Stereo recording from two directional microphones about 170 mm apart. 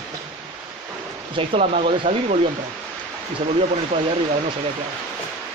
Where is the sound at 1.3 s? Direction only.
35° right (ahead or behind).